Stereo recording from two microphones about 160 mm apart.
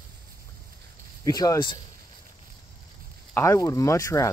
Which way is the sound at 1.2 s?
20° left (ahead or behind).